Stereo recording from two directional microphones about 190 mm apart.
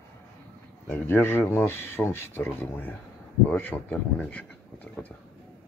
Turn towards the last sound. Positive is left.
turn(degrees=10)  # may be behind; listen again after turning